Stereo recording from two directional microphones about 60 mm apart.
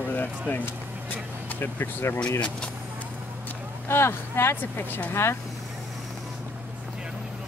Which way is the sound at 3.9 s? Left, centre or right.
Left.